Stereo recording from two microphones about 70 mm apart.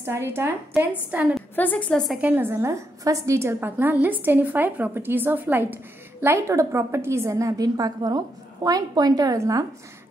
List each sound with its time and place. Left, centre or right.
0.0 s a woman's voice: right
1.1 s a woman's voice: right
1.5 s a woman's voice: left
2.1 s a woman's voice: right
6.2 s a woman's voice: right
9.4 s a woman's voice: right